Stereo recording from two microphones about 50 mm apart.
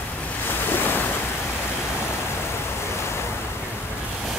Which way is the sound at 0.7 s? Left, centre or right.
Left.